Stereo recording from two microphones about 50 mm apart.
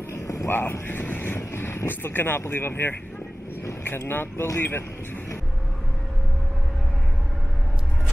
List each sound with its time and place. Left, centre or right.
0.1 s a sound: left
0.5 s speech: left
4.1 s speech: left